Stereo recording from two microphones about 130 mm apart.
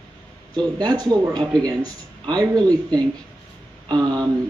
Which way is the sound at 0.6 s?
30° right (ahead or behind).